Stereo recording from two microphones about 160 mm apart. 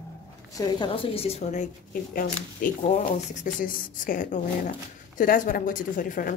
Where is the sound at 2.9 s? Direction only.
55° left (ahead or behind).